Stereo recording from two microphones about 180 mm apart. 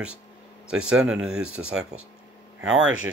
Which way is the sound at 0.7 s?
5° right (ahead or behind).